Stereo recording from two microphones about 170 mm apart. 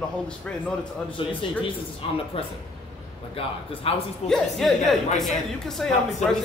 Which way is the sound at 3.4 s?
35° left (ahead or behind).